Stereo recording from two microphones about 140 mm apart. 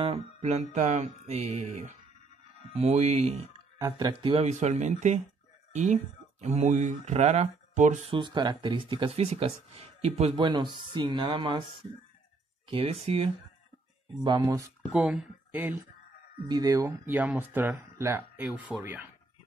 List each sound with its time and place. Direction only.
0.0 s music: 50° right (ahead or behind)
3.7 s speech: 25° right (ahead or behind)
4.3 s speech: 50° right (ahead or behind)
8.1 s speech: 35° right (ahead or behind); by 10.3 s 50° right (ahead or behind)
10.3 s speech: 35° right (ahead or behind)
12.6 s music: 40° right (ahead or behind)
14.2 s speech: 30° right (ahead or behind)
14.9 s speech: 5° right (ahead or behind)
16.4 s speech: 25° right (ahead or behind); by 19.0 s 10° right (ahead or behind)